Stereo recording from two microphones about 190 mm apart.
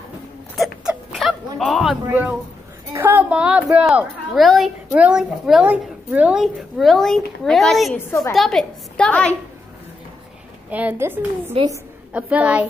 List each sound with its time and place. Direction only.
0.6 s dog: centre (ahead or behind)
2.9 s a woman's voice: 10° right (ahead or behind); by 9.4 s 5° left (ahead or behind)
10.7 s a woman's voice: 10° right (ahead or behind)
12.1 s a woman's voice: 5° right (ahead or behind)